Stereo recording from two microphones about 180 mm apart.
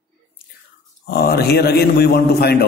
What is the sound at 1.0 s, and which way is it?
Mantra, 60° left (ahead or behind).